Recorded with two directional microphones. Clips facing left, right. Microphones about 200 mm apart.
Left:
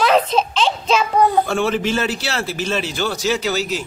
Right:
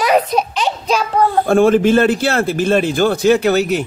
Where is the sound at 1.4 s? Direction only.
50° right (ahead or behind).